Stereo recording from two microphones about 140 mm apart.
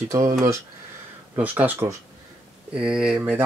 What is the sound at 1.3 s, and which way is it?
Speech, 10° right (ahead or behind).